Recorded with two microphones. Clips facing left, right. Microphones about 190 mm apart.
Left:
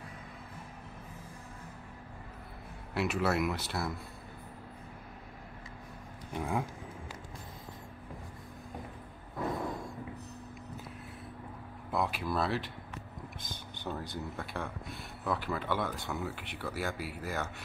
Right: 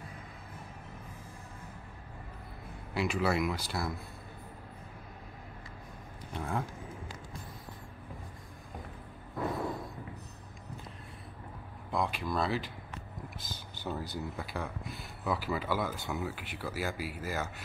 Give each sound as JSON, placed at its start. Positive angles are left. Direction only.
{"t": 2.9, "sound": "speech", "side_deg": 0}
{"t": 6.3, "sound": "speech", "side_deg": 10}
{"t": 11.9, "sound": "speech", "side_deg": 5}